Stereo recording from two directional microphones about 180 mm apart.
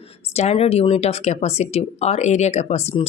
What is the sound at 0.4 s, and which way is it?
A woman's voice, 35° left (ahead or behind).